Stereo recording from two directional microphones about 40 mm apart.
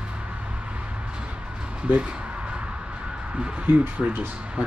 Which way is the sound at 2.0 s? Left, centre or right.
Right.